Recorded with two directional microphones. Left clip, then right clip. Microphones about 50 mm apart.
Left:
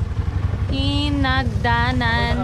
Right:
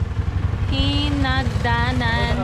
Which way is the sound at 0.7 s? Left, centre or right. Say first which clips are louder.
Even; centre.